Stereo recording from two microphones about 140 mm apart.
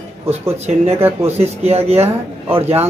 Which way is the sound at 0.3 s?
50° right (ahead or behind).